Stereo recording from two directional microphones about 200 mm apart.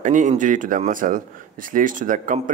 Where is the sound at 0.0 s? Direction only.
40° right (ahead or behind).